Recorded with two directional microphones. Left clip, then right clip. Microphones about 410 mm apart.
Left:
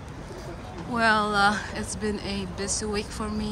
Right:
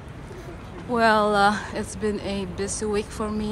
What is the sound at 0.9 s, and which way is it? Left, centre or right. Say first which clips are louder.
Speech: right 3 dB; centre.